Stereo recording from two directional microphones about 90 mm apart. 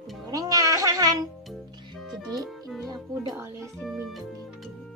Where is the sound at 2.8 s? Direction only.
45° right (ahead or behind).